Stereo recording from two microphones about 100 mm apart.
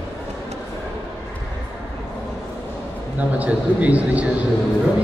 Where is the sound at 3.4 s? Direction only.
15° right (ahead or behind).